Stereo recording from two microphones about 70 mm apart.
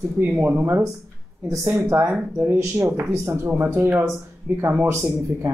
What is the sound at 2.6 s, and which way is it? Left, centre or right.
Speech, right.